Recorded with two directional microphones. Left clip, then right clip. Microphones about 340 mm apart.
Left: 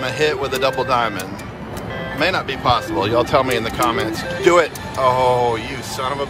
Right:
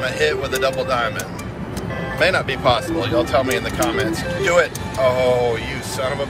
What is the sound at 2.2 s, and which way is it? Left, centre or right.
Speech, centre.